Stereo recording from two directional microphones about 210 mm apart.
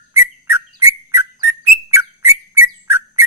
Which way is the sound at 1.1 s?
10° right (ahead or behind).